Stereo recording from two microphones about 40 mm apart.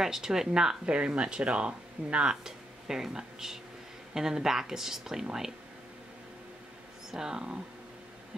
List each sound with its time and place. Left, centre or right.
0.0 s speech: centre
0.8 s speech: right
2.4 s speech: centre
7.1 s speech: centre